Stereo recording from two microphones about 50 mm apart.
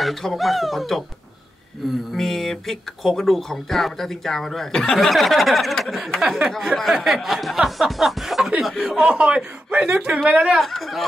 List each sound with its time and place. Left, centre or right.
0.0 s speech: centre
2.1 s speech: centre
6.2 s speech: centre
9.7 s speech: right
10.6 s speech: centre